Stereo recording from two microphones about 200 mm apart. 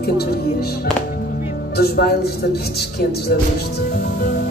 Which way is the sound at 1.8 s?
50° left (ahead or behind).